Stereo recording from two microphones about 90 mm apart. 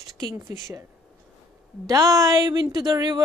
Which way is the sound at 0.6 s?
40° right (ahead or behind).